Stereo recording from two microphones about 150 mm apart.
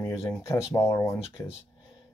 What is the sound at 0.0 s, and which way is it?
Speech, 15° left (ahead or behind).